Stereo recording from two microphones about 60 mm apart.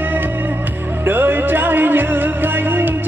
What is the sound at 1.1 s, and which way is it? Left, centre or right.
Music, right.